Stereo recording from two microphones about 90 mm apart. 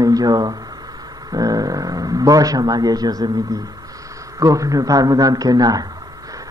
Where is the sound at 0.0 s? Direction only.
45° right (ahead or behind).